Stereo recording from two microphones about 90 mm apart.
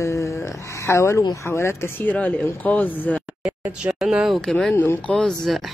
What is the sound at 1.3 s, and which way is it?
Speech, 30° left (ahead or behind).